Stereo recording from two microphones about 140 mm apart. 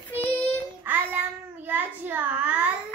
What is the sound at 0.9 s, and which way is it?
Child singing, 15° right (ahead or behind).